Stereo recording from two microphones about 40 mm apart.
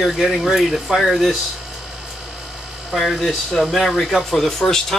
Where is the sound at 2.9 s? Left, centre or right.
Centre.